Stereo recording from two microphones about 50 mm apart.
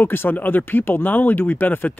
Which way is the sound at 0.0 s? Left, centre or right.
Left.